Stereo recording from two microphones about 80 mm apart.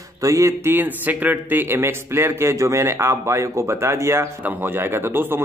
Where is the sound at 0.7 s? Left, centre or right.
Right.